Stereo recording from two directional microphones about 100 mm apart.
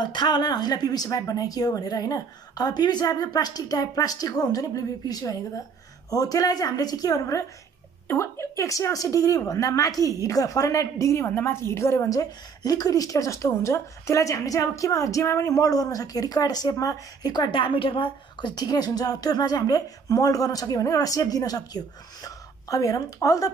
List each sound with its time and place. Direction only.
0.0 s a woman's voice: 45° left (ahead or behind)